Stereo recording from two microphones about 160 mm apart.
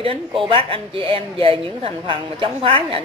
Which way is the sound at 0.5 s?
35° right (ahead or behind).